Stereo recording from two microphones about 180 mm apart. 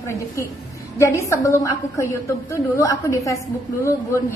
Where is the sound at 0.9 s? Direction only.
15° left (ahead or behind).